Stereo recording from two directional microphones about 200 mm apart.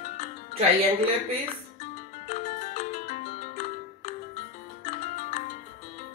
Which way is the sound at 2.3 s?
35° left (ahead or behind).